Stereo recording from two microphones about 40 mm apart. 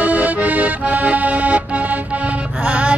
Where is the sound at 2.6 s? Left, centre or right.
Right.